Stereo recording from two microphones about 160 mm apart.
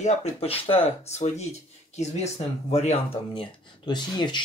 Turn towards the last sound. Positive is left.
turn(degrees=30)  # may be behind; listen again after turning